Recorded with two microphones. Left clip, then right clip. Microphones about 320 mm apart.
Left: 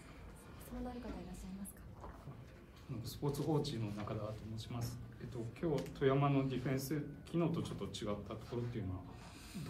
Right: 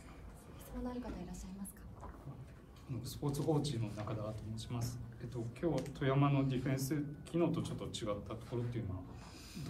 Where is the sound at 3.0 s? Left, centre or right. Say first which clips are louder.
Even; right.